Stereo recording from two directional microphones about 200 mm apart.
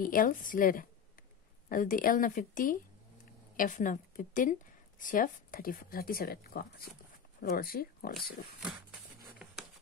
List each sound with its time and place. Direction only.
0.0 s a woman's voice: 45° left (ahead or behind)
9.4 s writing: 5° right (ahead or behind)